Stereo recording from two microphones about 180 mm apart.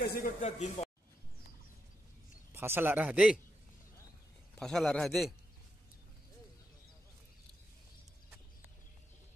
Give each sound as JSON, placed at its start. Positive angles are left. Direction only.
{"t": 0.0, "sound": "speech", "side_deg": 50}
{"t": 2.5, "sound": "a man's voice", "side_deg": -15}
{"t": 4.6, "sound": "a man's voice", "side_deg": 5}